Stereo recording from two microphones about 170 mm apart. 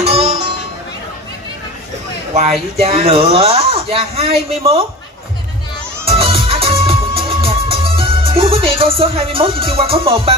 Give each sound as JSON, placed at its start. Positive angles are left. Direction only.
{"t": 0.0, "sound": "music", "side_deg": -35}
{"t": 2.8, "sound": "speech", "side_deg": -35}
{"t": 6.0, "sound": "music", "side_deg": -35}